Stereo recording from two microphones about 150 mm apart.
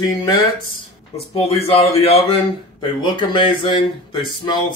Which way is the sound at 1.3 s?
40° left (ahead or behind).